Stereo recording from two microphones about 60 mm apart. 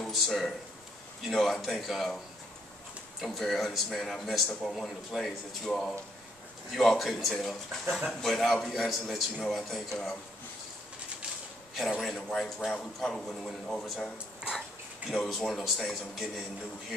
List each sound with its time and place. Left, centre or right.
0.1 s speech: centre
11.7 s a man's voice: centre